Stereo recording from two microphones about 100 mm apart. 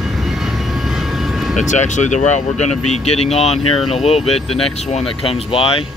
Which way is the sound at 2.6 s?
90° left.